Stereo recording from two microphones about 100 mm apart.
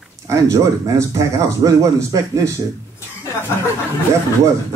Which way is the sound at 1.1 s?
35° right (ahead or behind).